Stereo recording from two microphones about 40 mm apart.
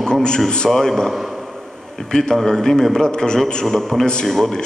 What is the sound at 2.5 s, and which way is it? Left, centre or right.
A man's voice, centre.